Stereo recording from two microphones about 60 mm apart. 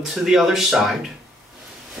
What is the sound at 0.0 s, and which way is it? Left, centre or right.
Speech, centre.